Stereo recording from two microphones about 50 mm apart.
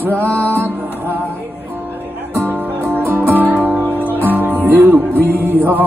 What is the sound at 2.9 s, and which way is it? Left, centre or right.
Music, right.